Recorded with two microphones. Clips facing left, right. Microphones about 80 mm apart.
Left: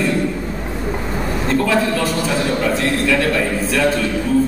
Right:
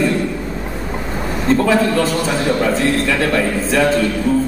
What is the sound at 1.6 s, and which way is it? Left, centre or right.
Speech, right.